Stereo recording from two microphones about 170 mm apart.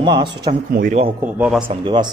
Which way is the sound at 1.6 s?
25° right (ahead or behind).